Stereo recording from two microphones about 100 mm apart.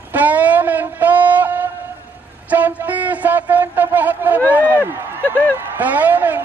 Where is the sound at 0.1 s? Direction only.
15° right (ahead or behind).